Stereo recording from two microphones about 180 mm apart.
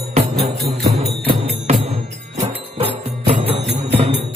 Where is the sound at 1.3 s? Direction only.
40° right (ahead or behind).